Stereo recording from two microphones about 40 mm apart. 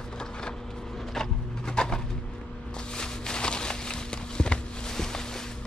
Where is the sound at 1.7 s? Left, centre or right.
Centre.